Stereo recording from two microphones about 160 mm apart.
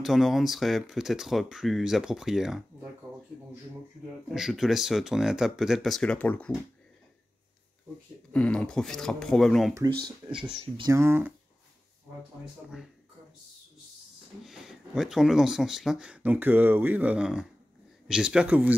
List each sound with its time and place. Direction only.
0.0 s speech: centre (ahead or behind)
4.3 s speech: centre (ahead or behind)
8.3 s speech: 5° left (ahead or behind)
9.8 s speech: 30° right (ahead or behind)
10.9 s speech: 15° right (ahead or behind)
14.4 s speech: 5° right (ahead or behind)